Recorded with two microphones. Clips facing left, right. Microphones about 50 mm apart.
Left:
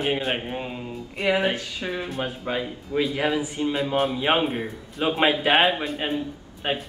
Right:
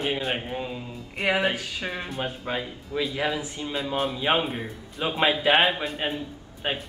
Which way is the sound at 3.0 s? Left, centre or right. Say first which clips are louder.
Left 4 dB; left.